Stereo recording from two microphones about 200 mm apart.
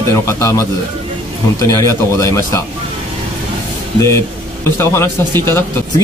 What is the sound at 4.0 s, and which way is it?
Speech, 15° left (ahead or behind).